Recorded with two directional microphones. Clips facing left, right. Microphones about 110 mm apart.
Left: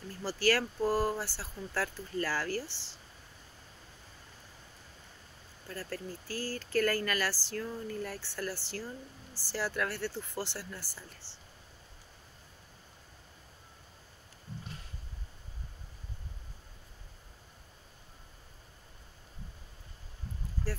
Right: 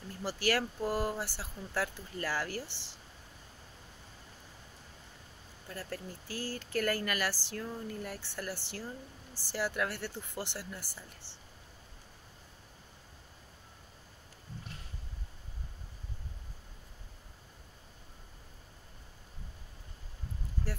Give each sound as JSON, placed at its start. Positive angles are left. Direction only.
{"t": 0.2, "sound": "speech", "side_deg": -20}
{"t": 5.7, "sound": "speech", "side_deg": -15}